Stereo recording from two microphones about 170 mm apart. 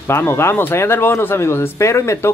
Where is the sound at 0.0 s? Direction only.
15° left (ahead or behind).